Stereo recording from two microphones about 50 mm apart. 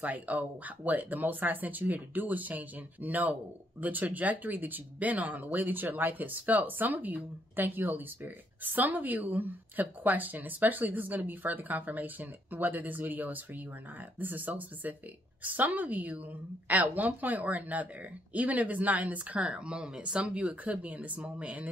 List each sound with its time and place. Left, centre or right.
0.0 s speech: right